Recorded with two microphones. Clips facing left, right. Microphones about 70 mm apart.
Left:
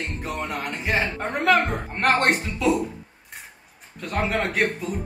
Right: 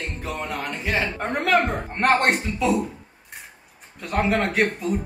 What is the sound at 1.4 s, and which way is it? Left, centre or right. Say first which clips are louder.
Speech: left 1 dB; centre.